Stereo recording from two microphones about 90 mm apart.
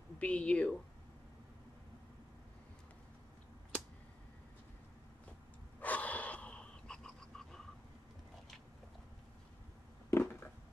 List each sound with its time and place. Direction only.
0.2 s speech: 15° left (ahead or behind)
5.8 s gasp: 15° left (ahead or behind)
10.1 s a sound: 25° left (ahead or behind)